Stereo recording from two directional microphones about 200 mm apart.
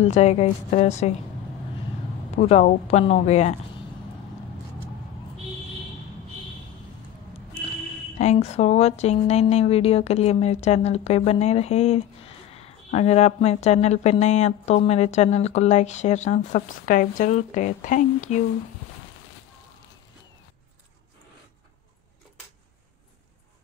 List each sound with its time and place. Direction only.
0.0 s a woman's voice: 35° left (ahead or behind)
2.3 s a woman's voice: 35° left (ahead or behind)
8.2 s a woman's voice: 35° left (ahead or behind)